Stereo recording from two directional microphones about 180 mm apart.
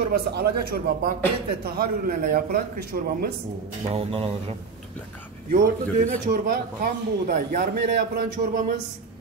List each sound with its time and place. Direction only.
0.1 s a man's voice: 60° right (ahead or behind)
3.9 s speech: 35° right (ahead or behind)
5.5 s a man's voice: 50° right (ahead or behind)